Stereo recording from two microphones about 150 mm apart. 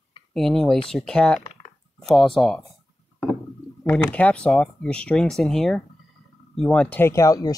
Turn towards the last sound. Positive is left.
turn(degrees=20)  # may be behind; listen again after turning